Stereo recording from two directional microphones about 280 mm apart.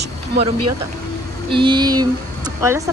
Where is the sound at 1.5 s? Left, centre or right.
Centre.